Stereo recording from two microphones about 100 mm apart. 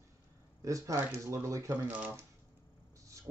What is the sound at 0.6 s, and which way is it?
A man's voice, 35° right (ahead or behind).